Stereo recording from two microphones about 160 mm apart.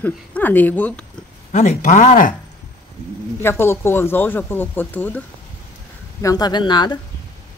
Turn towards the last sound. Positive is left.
turn(degrees=30)  # may be behind; listen again after turning